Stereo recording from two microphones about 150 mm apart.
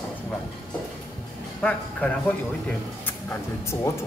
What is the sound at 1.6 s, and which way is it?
Speech, 10° left (ahead or behind).